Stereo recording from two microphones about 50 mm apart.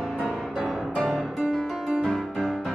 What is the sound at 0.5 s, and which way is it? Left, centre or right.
Music, centre.